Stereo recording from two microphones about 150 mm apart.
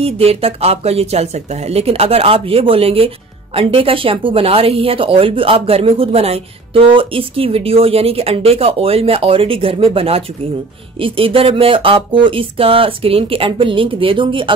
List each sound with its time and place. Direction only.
0.0 s speech: 40° right (ahead or behind)